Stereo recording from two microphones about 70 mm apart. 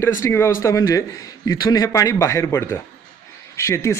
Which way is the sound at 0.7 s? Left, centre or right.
Left.